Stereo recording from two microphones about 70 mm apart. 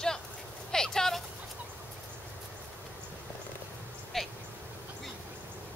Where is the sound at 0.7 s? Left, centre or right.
Centre.